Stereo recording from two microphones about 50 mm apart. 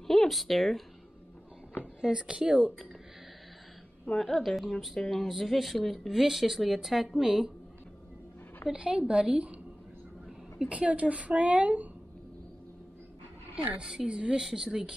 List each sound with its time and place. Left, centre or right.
0.0 s speech: centre
2.0 s a woman's voice: centre
4.2 s speech: centre
8.7 s a woman's voice: right
10.7 s a woman's voice: right
13.7 s a woman's voice: centre
14.4 s speech: centre